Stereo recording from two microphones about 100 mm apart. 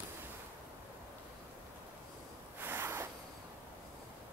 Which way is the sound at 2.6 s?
20° right (ahead or behind).